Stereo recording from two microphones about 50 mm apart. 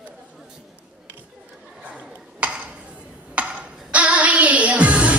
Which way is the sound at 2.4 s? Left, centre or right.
Right.